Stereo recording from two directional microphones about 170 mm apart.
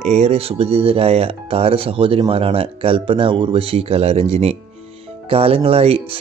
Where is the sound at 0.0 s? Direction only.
40° right (ahead or behind).